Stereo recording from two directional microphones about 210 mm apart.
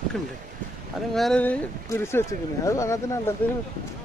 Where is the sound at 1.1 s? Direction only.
5° left (ahead or behind).